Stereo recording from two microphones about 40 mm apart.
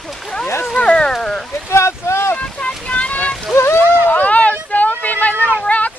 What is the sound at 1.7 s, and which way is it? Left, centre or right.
Boat, left.